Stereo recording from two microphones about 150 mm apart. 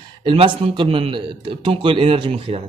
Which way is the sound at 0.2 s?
35° right (ahead or behind).